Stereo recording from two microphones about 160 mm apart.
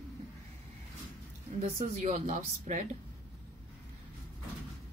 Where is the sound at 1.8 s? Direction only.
45° right (ahead or behind).